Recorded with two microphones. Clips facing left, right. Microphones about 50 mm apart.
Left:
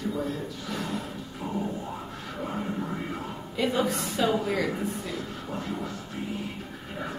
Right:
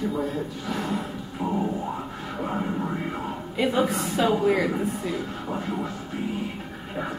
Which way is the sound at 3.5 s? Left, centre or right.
Centre.